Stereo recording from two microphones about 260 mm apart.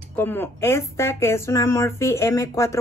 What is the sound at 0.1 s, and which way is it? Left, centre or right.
Speech, centre.